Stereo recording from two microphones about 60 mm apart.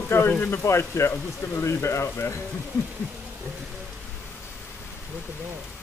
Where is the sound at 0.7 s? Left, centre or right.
Left.